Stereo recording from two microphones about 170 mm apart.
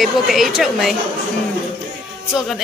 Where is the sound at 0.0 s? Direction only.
Centre (ahead or behind).